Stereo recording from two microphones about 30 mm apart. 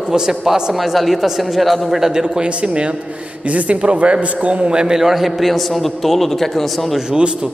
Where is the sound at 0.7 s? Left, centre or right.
Centre.